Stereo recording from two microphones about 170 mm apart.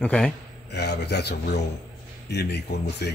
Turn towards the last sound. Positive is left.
turn(degrees=80)